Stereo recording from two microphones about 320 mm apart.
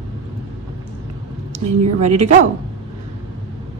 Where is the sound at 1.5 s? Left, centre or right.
Right.